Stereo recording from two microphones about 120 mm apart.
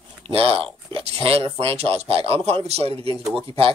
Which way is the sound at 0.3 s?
55° right (ahead or behind).